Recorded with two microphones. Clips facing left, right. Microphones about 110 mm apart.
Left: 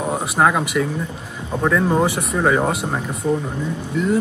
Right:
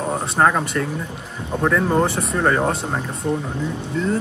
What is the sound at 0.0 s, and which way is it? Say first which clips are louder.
Speech: even; 5° left (ahead or behind).